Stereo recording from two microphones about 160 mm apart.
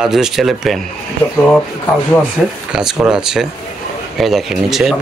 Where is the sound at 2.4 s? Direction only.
Centre (ahead or behind).